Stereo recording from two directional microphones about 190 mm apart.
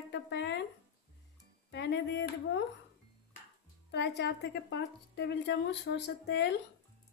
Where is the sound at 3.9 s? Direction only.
60° left (ahead or behind).